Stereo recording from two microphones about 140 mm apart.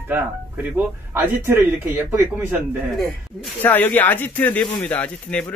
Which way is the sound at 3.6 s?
15° left (ahead or behind).